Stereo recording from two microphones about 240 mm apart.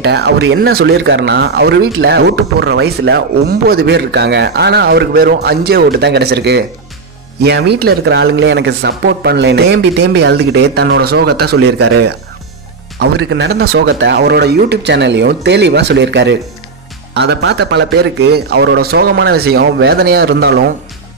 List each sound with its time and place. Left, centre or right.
0.0 s speech: right